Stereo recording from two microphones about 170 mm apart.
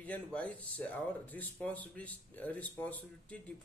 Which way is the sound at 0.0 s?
5° left (ahead or behind).